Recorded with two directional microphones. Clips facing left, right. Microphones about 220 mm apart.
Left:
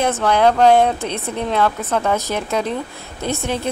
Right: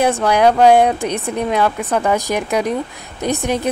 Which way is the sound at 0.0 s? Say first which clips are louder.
Right 2 dB; 15° right (ahead or behind).